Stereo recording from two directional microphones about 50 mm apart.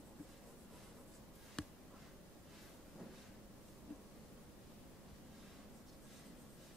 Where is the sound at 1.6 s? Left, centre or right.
Centre.